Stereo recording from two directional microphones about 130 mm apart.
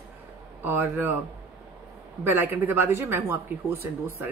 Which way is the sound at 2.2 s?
15° right (ahead or behind).